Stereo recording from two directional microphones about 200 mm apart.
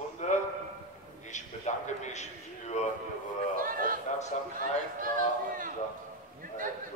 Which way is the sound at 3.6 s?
45° right (ahead or behind).